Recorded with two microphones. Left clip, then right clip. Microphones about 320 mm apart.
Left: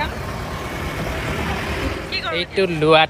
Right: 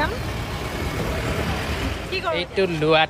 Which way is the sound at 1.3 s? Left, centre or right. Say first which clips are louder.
Left 2 dB; left.